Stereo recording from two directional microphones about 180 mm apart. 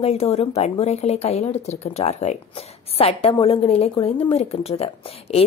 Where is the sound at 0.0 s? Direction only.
35° left (ahead or behind).